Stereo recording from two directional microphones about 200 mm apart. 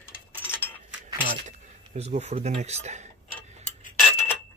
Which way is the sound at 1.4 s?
35° right (ahead or behind).